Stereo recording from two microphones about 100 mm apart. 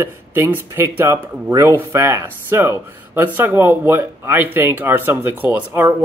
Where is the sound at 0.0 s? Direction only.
25° right (ahead or behind).